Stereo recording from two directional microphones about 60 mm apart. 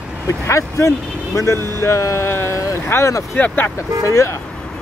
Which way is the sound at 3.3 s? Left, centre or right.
Left.